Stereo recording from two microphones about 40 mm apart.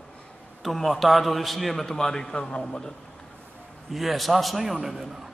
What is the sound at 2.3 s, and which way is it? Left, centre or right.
Speech, left.